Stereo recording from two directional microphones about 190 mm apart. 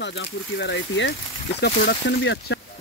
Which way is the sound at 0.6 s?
65° left (ahead or behind).